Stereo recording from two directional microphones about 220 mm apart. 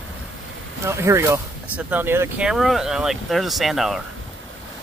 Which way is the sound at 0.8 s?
10° right (ahead or behind).